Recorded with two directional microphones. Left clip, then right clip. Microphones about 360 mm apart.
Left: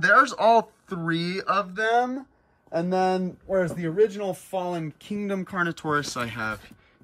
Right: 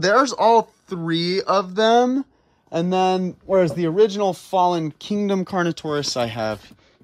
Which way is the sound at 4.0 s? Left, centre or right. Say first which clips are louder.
Right 5 dB; right.